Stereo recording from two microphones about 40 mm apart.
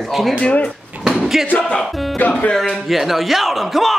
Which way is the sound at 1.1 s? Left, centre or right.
Centre.